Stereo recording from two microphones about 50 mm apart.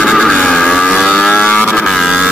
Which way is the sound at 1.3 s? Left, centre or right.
Left.